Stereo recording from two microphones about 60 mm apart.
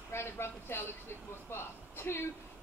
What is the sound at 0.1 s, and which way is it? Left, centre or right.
A woman's voice, left.